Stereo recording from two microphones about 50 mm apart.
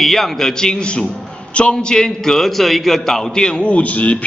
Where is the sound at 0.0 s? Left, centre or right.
Centre.